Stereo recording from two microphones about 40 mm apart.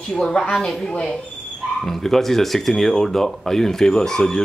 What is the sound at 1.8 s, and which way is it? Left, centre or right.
Speech, centre.